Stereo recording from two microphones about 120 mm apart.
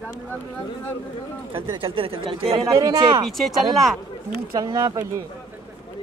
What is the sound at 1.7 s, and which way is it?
Speech, 50° right (ahead or behind).